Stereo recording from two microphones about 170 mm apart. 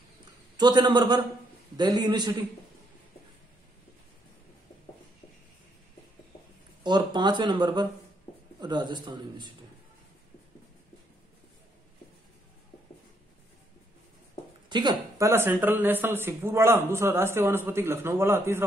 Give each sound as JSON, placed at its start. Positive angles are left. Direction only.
{"t": 0.6, "sound": "speech", "side_deg": -25}
{"t": 6.8, "sound": "speech", "side_deg": -25}
{"t": 14.7, "sound": "speech", "side_deg": -25}